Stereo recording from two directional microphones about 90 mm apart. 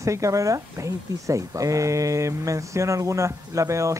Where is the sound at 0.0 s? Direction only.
35° right (ahead or behind).